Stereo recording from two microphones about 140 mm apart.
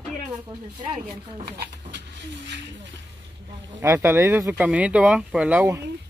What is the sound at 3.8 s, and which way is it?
Speech, 15° right (ahead or behind).